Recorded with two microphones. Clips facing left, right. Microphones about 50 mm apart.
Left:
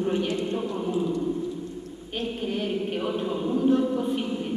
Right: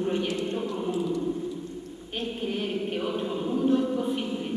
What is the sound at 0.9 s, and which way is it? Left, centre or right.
Choir, left.